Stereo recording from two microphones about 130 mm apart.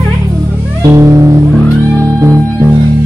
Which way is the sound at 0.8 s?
25° right (ahead or behind).